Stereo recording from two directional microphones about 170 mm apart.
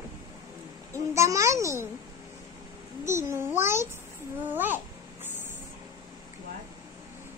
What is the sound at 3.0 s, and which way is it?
Speech, 15° right (ahead or behind).